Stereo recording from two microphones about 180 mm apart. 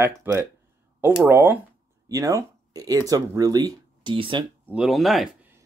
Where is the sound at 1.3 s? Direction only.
10° right (ahead or behind); by 4.4 s 30° right (ahead or behind).